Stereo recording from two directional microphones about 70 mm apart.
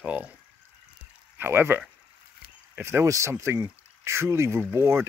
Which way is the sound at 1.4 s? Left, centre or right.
Right.